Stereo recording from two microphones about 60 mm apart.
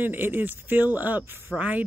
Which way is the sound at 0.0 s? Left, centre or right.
Right.